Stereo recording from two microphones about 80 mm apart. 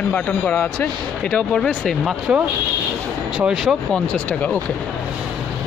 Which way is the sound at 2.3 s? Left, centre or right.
Centre.